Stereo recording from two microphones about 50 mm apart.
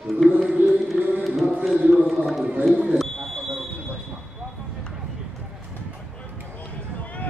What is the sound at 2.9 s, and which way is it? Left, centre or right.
Smoke detector, centre.